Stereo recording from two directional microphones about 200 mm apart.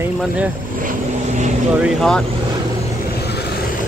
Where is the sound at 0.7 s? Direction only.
40° right (ahead or behind).